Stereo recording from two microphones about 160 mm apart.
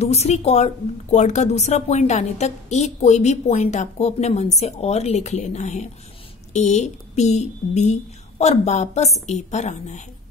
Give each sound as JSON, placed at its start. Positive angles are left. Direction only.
{"t": 0.0, "sound": "a woman's voice", "side_deg": 40}